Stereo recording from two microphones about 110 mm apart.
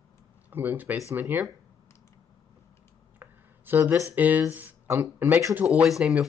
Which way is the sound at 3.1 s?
20° right (ahead or behind).